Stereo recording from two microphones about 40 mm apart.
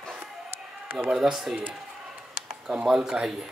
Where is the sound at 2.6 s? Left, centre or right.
Centre.